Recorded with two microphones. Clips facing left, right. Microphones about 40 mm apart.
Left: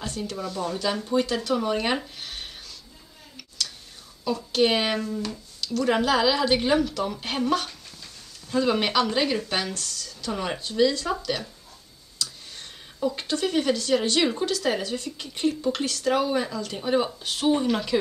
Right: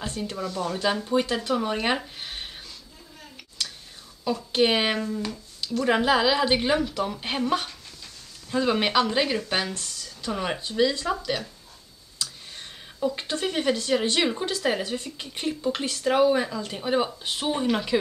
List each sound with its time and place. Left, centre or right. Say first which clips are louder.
0.4 s speech: right 2 dB; centre
3.6 s whispering: left 1 dB; right
4.2 s a sound: even; centre
4.5 s speech: even; centre